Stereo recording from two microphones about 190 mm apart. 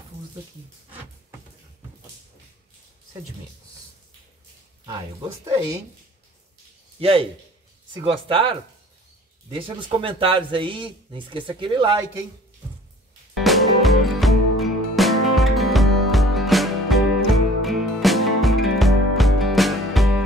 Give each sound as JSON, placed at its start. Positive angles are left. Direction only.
{"t": 7.0, "sound": "a man's voice", "side_deg": -30}
{"t": 9.6, "sound": "speech", "side_deg": -25}
{"t": 13.4, "sound": "music", "side_deg": 0}